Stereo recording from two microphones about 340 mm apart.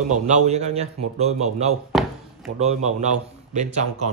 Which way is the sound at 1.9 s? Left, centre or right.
Centre.